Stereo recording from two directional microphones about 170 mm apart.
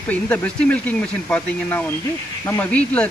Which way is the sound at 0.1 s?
10° left (ahead or behind).